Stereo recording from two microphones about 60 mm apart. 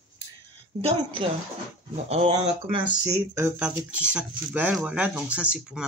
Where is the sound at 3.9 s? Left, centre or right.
Right.